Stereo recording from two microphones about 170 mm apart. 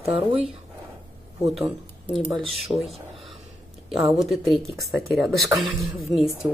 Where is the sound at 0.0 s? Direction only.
35° right (ahead or behind).